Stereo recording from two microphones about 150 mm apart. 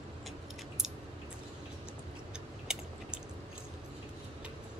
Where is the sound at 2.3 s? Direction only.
5° right (ahead or behind).